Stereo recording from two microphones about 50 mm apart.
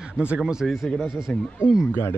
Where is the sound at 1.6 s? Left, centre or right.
Left.